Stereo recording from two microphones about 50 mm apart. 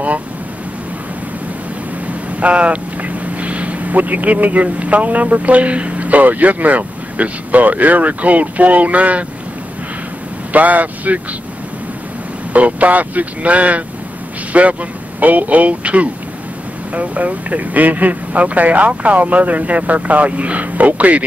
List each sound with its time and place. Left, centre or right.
2.4 s speech: right
10.5 s speech: right
12.5 s speech: right